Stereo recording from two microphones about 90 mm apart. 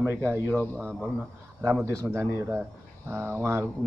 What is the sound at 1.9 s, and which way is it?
A man's voice, 35° right (ahead or behind).